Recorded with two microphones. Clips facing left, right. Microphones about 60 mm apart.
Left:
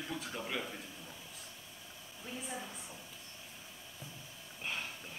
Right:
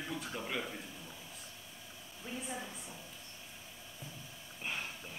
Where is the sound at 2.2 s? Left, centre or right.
Centre.